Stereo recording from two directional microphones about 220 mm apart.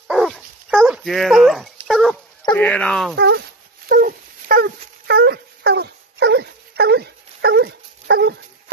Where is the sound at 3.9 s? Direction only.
40° right (ahead or behind).